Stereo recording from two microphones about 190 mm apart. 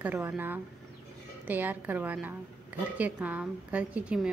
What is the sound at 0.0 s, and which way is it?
A woman's voice, 10° right (ahead or behind).